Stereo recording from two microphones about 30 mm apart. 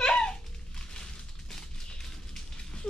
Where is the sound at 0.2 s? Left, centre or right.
Left.